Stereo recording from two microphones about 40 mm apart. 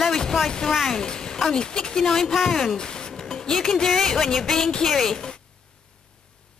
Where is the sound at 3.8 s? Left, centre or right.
Centre.